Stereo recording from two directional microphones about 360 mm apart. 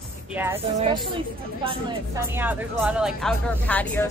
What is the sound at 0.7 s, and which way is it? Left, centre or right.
A woman's voice, centre.